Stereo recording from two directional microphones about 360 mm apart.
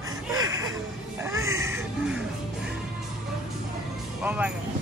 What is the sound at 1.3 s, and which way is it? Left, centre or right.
Music, centre.